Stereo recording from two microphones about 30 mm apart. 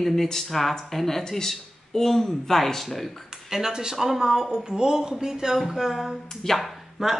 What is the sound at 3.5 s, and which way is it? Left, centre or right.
Speech, centre.